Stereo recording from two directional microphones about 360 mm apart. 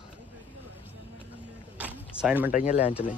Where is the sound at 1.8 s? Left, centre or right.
Centre.